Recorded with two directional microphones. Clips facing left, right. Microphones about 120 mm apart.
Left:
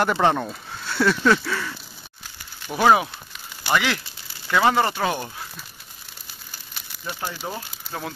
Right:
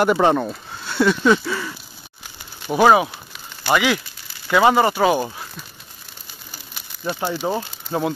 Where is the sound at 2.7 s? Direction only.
10° right (ahead or behind).